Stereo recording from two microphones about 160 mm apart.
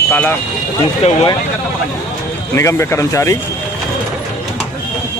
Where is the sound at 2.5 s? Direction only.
15° left (ahead or behind).